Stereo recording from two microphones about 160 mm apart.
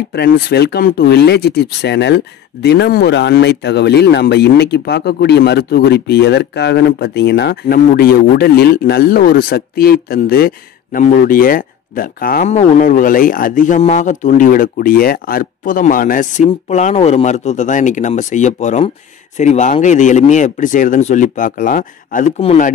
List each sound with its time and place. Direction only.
0.1 s speech: 85° left; by 12.4 s 65° left (ahead or behind)
12.4 s speech: 45° left (ahead or behind)
13.7 s speech: 45° left (ahead or behind)